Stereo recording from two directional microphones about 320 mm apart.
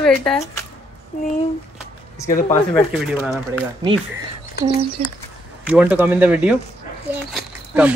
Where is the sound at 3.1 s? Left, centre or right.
Centre.